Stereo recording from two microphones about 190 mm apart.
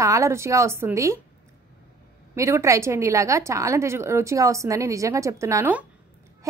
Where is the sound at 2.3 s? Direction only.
15° right (ahead or behind).